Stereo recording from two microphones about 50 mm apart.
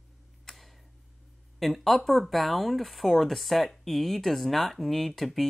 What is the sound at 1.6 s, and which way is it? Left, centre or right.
Speech, centre.